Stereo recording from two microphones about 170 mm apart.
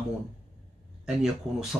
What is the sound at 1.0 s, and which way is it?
Speech, 5° right (ahead or behind).